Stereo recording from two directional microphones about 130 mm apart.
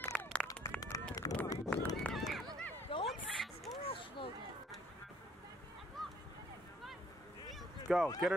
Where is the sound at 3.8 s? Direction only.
45° left (ahead or behind).